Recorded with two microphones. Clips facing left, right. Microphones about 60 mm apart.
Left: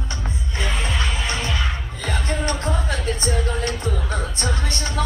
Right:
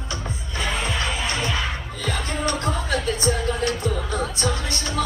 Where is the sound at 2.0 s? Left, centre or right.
Left.